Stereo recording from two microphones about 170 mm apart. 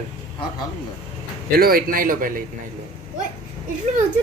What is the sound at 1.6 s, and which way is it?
Speech, 60° right (ahead or behind).